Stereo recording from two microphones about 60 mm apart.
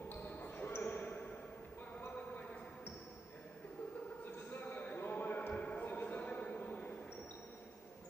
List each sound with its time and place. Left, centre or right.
0.4 s basketball bounce: left
4.5 s basketball bounce: left
5.5 s a sound: left